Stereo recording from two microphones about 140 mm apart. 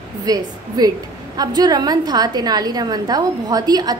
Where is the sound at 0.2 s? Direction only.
25° right (ahead or behind).